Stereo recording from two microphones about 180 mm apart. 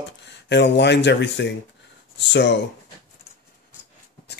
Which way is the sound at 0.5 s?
70° left (ahead or behind).